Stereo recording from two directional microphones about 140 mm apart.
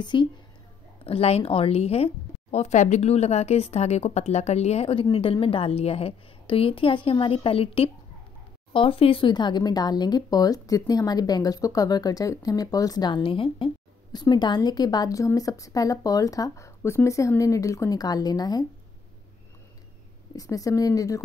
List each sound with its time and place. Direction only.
0.0 s a woman's voice: 35° left (ahead or behind)
1.0 s speech: 45° left (ahead or behind)
2.5 s a woman's voice: 55° left (ahead or behind); by 18.7 s 30° left (ahead or behind)
20.3 s speech: 25° left (ahead or behind)